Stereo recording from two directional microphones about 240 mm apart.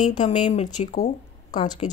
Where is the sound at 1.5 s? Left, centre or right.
Centre.